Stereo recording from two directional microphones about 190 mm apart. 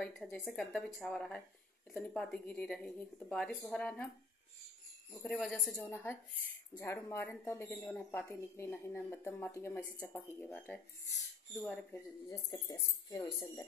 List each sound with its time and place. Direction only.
0.0 s a woman's voice: centre (ahead or behind)
5.4 s a woman's voice: centre (ahead or behind)